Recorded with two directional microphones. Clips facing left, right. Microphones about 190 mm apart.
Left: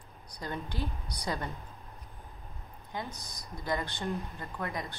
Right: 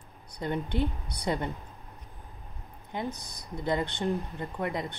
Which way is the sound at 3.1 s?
55° right (ahead or behind).